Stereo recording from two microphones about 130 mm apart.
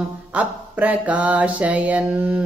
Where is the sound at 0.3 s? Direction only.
10° right (ahead or behind).